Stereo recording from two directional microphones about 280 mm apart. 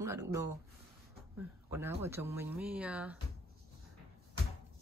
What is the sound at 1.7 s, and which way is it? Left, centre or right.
Speech, centre.